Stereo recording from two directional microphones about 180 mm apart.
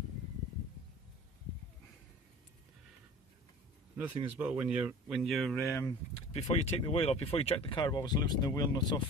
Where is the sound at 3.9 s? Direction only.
10° right (ahead or behind).